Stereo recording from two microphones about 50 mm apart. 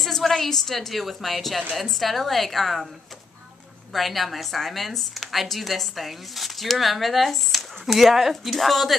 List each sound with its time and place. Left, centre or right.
0.0 s a woman's voice: centre
3.9 s a woman's voice: centre